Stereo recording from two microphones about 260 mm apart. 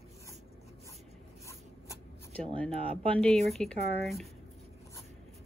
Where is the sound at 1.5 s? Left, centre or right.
Centre.